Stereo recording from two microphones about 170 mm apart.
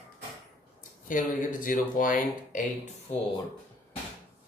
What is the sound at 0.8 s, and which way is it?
Speech, 50° left (ahead or behind).